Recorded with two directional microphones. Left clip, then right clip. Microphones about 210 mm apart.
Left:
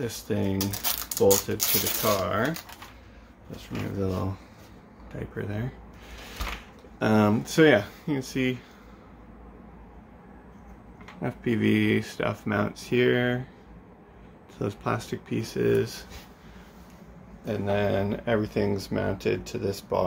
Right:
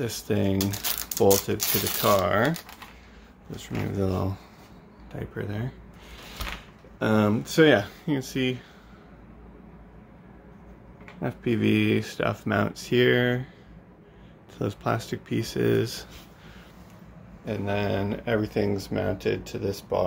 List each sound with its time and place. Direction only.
0.0 s speech: 25° right (ahead or behind)
3.5 s speech: 30° right (ahead or behind)
5.1 s speech: 10° right (ahead or behind)
7.0 s speech: centre (ahead or behind)
11.1 s speech: 15° right (ahead or behind)
14.6 s speech: 15° right (ahead or behind)
17.5 s speech: 5° right (ahead or behind)